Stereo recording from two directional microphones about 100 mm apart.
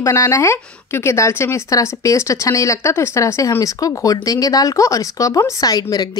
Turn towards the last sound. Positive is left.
turn(degrees=40)  # may be behind; listen again after turning